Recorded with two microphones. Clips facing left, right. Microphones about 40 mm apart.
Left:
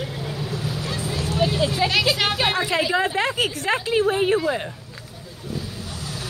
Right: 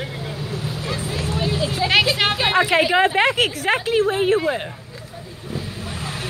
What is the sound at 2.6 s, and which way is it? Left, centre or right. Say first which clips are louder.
Speech: right 5 dB; right.